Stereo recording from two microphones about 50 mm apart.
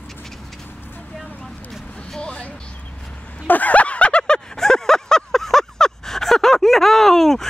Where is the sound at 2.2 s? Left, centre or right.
Left.